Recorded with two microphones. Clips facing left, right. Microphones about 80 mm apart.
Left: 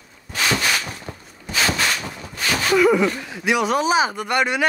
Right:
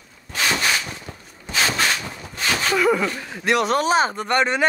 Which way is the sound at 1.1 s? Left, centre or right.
Left.